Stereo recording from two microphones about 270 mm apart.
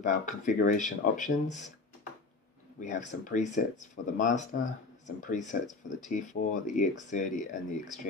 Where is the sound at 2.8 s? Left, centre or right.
Left.